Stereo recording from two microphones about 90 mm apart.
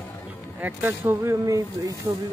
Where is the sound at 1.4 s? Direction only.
40° right (ahead or behind).